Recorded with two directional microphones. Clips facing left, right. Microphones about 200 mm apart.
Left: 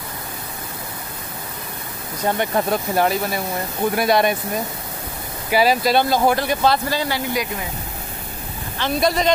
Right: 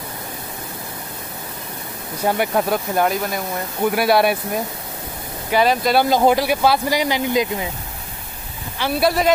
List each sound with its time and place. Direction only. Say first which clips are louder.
2.2 s speech: right 1 dB; 10° right (ahead or behind)
5.5 s speech: even; 5° left (ahead or behind)
5.9 s speech: right 2 dB; 15° right (ahead or behind)
8.7 s speech: right 1 dB; 10° right (ahead or behind)